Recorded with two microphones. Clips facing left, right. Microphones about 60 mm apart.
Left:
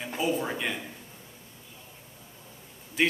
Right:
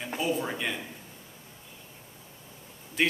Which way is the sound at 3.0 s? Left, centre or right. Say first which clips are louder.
Left 1 dB; centre.